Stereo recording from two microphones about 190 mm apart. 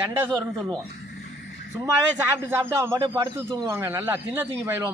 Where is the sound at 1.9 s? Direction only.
15° right (ahead or behind).